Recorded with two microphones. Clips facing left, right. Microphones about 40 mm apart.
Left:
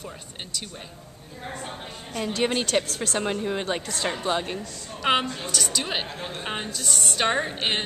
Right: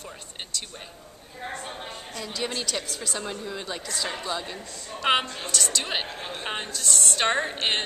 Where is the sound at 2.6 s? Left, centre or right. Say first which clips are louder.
Left 6 dB; left.